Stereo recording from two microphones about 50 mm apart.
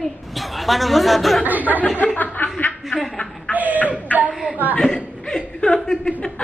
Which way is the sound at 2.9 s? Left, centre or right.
Left.